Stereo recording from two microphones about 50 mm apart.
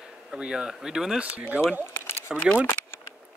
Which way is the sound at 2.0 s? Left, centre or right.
Left.